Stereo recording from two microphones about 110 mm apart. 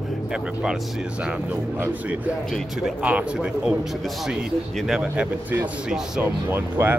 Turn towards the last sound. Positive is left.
turn(degrees=-20)  # may be behind; listen again after turning